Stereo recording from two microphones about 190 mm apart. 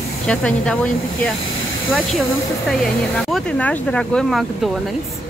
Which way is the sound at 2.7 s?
5° left (ahead or behind).